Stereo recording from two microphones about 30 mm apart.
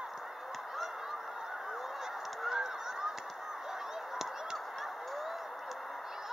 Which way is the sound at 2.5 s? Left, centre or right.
Right.